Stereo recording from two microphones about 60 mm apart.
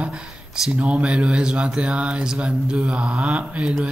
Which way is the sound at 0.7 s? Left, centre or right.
Right.